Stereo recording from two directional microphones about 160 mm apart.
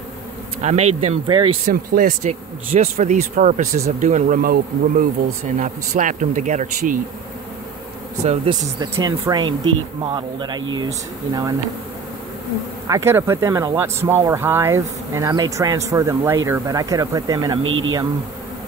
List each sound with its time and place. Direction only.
0.6 s speech: 45° right (ahead or behind)
1.7 s speech: 55° right (ahead or behind)
2.7 s speech: 45° right (ahead or behind)
8.9 s speech: 20° right (ahead or behind)
12.8 s speech: 20° right (ahead or behind)